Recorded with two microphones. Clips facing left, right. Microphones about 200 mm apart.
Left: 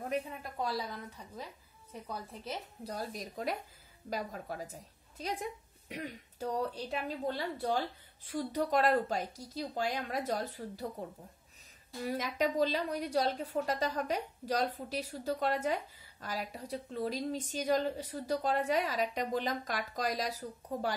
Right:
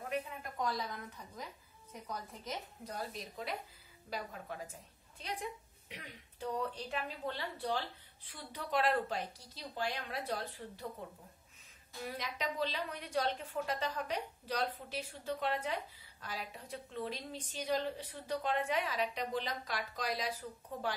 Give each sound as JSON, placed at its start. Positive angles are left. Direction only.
{"t": 0.7, "sound": "a woman's voice", "side_deg": 30}
{"t": 3.2, "sound": "a woman's voice", "side_deg": 45}
{"t": 12.1, "sound": "a woman's voice", "side_deg": 45}